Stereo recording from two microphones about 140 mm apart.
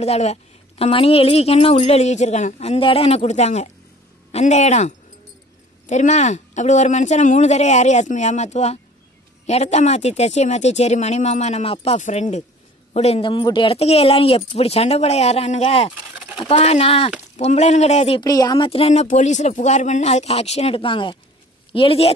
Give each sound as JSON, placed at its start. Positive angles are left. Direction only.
{"t": 0.0, "sound": "a woman's voice", "side_deg": 50}
{"t": 16.2, "sound": "a sound", "side_deg": -5}
{"t": 16.4, "sound": "a woman's voice", "side_deg": 45}
{"t": 18.2, "sound": "speech", "side_deg": 25}
{"t": 18.7, "sound": "a woman's voice", "side_deg": 50}